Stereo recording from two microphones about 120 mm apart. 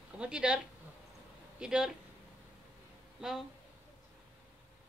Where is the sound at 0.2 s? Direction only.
10° right (ahead or behind).